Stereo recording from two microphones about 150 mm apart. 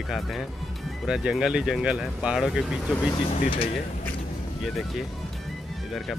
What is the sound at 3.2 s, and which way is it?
Speech, 45° left (ahead or behind).